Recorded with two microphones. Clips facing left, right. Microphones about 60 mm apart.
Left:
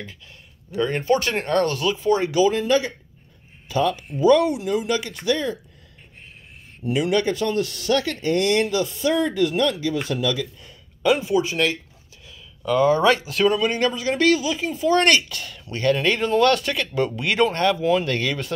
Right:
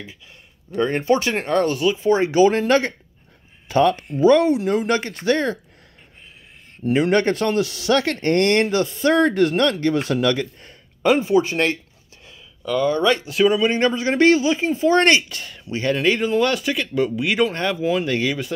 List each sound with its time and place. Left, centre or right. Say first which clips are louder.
0.7 s speech: right 2 dB; right
2.4 s speech: right 3 dB; right
4.2 s speech: right 2 dB; right
6.8 s speech: right 3 dB; right
7.4 s speech: right 3 dB; right
12.6 s speech: left 1 dB; centre
13.2 s speech: right 3 dB; centre
13.5 s speech: right 2 dB; right; by 18.5 s centre